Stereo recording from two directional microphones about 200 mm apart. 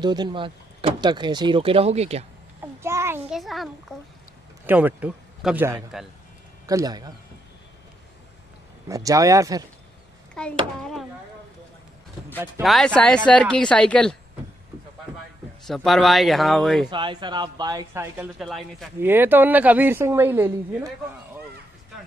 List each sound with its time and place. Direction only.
0.0 s speech: 20° right (ahead or behind)
2.8 s a sound: 15° right (ahead or behind)
3.3 s a woman's voice: centre (ahead or behind)
6.6 s a man's voice: 15° right (ahead or behind)
8.8 s a woman's voice: 15° right (ahead or behind)
10.4 s speech: 5° left (ahead or behind)
12.6 s speech: 5° left (ahead or behind)
15.6 s speech: centre (ahead or behind)
16.9 s speech: 25° right (ahead or behind)
18.4 s speech: centre (ahead or behind)
18.9 s a woman's voice: 10° right (ahead or behind)